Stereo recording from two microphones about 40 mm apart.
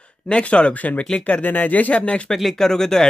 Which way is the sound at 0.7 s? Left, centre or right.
Left.